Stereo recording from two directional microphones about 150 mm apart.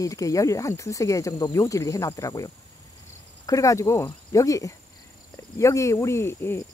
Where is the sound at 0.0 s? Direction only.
20° left (ahead or behind).